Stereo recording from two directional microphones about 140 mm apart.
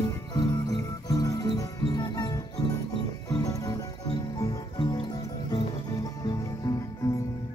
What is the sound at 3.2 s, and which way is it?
Music, 25° left (ahead or behind).